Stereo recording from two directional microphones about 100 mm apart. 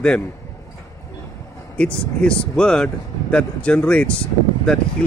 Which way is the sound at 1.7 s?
10° left (ahead or behind).